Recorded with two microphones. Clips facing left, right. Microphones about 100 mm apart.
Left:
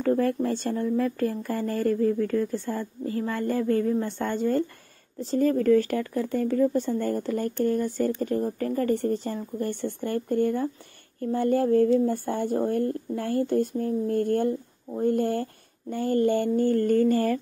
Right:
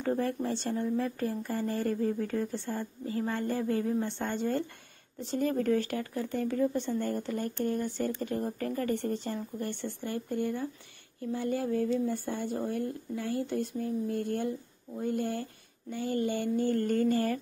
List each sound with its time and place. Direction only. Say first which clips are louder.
0.0 s speech: left 7 dB; 55° left (ahead or behind)